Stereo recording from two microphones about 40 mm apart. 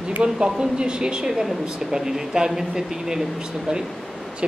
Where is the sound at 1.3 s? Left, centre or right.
Centre.